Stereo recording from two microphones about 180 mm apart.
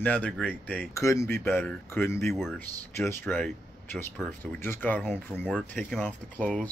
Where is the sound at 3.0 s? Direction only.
10° left (ahead or behind).